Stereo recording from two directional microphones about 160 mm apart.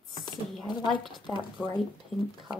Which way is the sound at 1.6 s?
5° right (ahead or behind).